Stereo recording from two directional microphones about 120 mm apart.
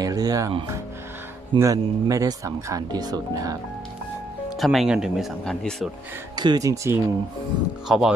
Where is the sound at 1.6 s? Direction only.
25° right (ahead or behind).